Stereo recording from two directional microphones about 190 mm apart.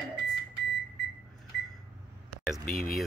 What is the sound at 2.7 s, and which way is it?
Speech, 50° left (ahead or behind).